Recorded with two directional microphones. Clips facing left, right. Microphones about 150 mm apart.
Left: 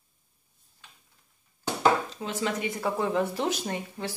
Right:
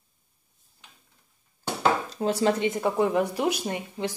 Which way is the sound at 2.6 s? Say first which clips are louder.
Right 5 dB; 20° right (ahead or behind).